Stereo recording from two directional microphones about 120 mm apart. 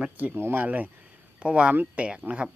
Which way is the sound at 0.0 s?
15° right (ahead or behind).